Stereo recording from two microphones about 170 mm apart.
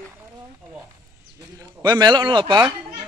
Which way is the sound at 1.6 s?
25° right (ahead or behind).